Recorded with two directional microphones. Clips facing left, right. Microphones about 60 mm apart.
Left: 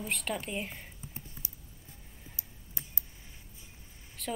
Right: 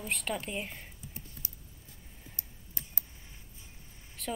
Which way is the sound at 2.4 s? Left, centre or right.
Right.